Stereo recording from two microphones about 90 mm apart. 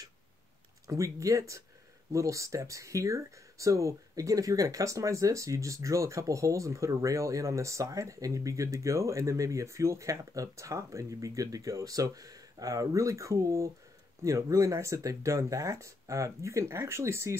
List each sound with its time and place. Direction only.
0.8 s speech: 35° right (ahead or behind)